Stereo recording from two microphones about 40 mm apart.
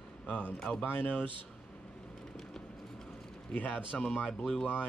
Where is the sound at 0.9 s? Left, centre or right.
Left.